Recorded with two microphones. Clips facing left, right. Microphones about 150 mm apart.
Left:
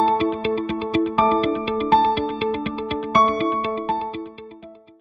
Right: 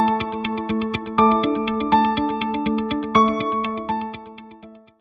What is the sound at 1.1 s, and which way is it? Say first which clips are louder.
Music: right 1 dB; 30° left (ahead or behind).